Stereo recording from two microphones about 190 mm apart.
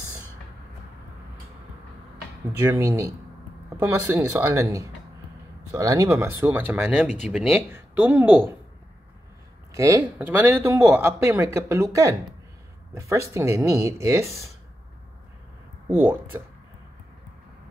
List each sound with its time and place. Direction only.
2.6 s speech: 15° right (ahead or behind)
9.8 s speech: 15° right (ahead or behind)
13.3 s speech: 15° right (ahead or behind)
16.0 s speech: 10° right (ahead or behind)